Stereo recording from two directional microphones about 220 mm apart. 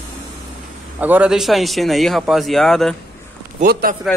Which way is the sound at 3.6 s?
45° right (ahead or behind).